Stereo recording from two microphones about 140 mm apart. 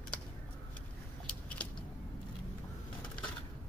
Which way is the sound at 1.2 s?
10° left (ahead or behind).